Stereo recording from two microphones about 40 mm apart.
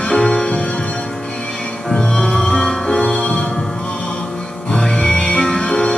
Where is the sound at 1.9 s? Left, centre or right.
Centre.